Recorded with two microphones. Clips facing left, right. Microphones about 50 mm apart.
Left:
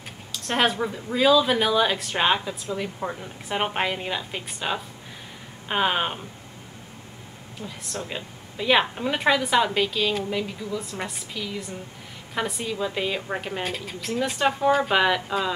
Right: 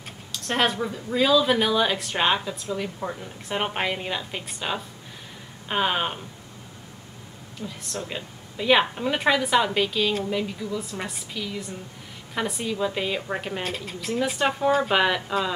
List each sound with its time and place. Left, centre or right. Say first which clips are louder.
0.3 s a sound: left 1 dB; centre
0.7 s speech: even; centre
7.6 s speech: right 1 dB; left
8.1 s speech: even; centre